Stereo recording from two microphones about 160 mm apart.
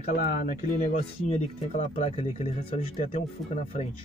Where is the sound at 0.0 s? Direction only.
70° left (ahead or behind).